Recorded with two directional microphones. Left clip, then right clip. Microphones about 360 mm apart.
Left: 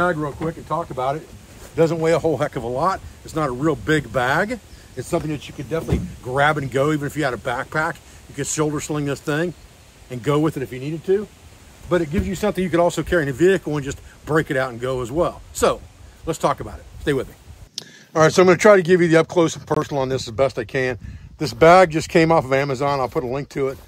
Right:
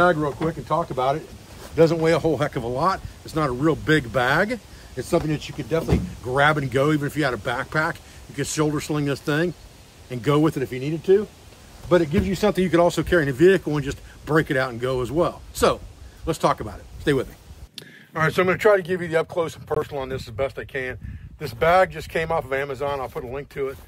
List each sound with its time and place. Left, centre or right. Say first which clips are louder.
0.0 s a man's voice: right 2 dB; centre